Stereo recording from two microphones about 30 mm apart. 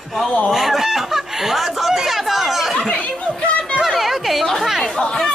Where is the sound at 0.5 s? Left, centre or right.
Centre.